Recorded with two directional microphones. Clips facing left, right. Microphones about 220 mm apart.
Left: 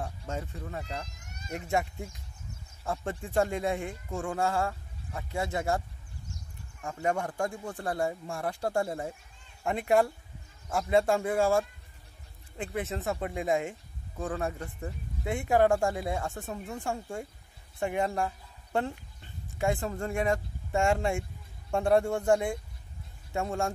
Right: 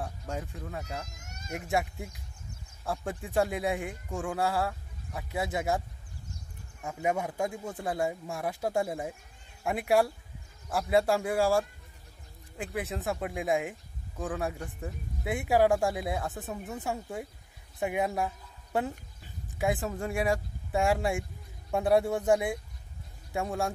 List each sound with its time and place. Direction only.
0.0 s speech: centre (ahead or behind)
1.1 s a sound: 45° right (ahead or behind)
1.5 s speech: centre (ahead or behind)
6.8 s speech: 5° right (ahead or behind)
12.7 s speech: centre (ahead or behind)